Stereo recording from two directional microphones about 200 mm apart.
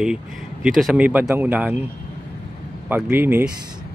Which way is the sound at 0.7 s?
Centre (ahead or behind).